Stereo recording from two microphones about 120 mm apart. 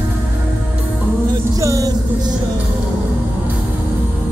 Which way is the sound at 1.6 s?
30° right (ahead or behind).